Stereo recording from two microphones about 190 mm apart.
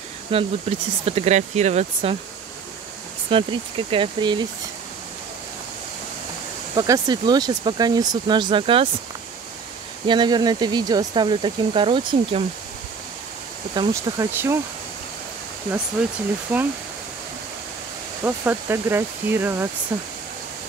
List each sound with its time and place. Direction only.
0.3 s speech: 30° right (ahead or behind)
3.3 s speech: 30° right (ahead or behind)
6.7 s speech: 20° right (ahead or behind)
10.0 s speech: 25° right (ahead or behind)
13.7 s speech: 15° right (ahead or behind)
16.5 s speech: 10° right (ahead or behind)
18.2 s speech: 10° right (ahead or behind)